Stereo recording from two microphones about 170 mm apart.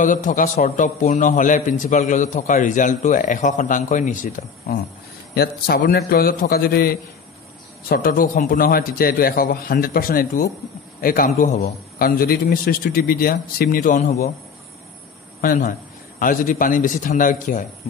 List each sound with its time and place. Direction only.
0.0 s a man's voice: 50° left (ahead or behind)
5.3 s a man's voice: 65° left (ahead or behind); by 11.7 s 45° left (ahead or behind)
12.0 s a man's voice: 60° left (ahead or behind)
15.4 s a man's voice: 55° left (ahead or behind)